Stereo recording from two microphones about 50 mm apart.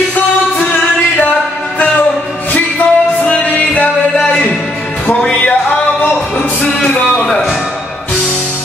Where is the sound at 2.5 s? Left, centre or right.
Left.